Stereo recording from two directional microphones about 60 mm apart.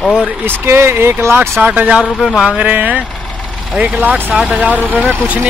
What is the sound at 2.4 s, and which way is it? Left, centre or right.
Speech, centre.